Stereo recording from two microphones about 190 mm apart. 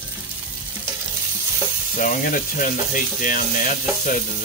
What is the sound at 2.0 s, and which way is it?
Speech, 45° left (ahead or behind).